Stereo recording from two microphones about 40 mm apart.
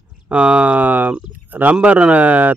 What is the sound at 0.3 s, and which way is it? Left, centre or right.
Speech, right.